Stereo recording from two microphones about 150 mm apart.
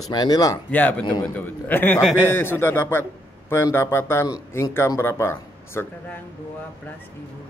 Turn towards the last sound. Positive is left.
turn(degrees=15)  # may be behind; listen again after turning